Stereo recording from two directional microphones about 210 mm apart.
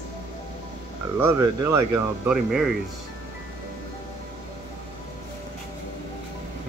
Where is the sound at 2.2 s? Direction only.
Centre (ahead or behind).